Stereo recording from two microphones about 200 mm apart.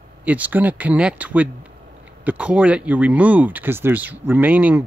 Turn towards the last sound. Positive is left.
turn(degrees=-10)  # may be behind; listen again after turning